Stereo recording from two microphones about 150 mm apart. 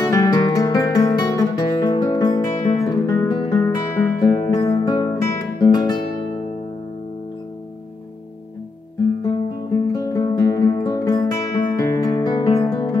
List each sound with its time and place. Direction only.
0.0 s music: 25° left (ahead or behind)
3.3 s guitar: 20° left (ahead or behind)
4.4 s music: 25° left (ahead or behind)
9.9 s music: 25° left (ahead or behind)